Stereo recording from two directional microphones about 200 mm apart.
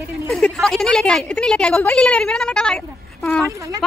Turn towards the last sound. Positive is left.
turn(degrees=-15)  # may be behind; listen again after turning